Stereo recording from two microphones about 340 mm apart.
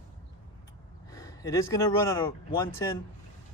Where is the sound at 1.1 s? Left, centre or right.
Centre.